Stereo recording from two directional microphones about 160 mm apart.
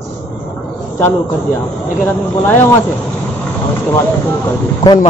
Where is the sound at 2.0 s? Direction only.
15° left (ahead or behind).